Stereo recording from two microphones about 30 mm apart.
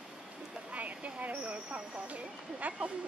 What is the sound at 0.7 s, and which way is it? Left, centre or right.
Speech, right.